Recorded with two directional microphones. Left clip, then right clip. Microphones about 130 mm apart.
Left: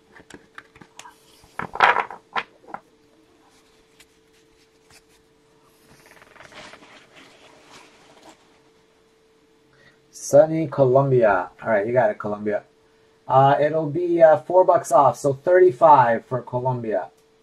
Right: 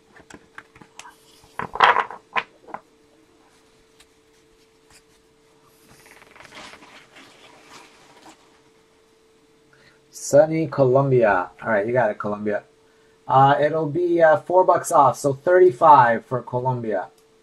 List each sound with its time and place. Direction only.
0.3 s clip-clop: 25° left (ahead or behind)
1.6 s a sound: 15° left (ahead or behind)
10.3 s speech: 25° right (ahead or behind)